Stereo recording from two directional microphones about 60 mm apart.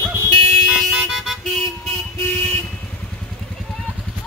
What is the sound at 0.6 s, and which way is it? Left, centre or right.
Vehicle, centre.